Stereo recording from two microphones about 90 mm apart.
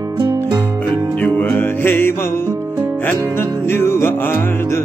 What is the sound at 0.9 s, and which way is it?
Music, 20° left (ahead or behind).